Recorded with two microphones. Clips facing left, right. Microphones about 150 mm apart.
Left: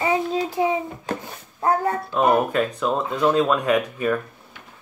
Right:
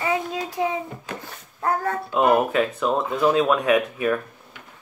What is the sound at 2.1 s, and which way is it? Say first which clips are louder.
Speech: right 1 dB; 5° right (ahead or behind).